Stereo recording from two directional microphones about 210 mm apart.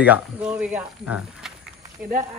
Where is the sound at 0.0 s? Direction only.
5° right (ahead or behind).